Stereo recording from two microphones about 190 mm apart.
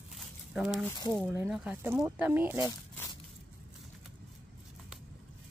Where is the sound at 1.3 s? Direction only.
5° right (ahead or behind).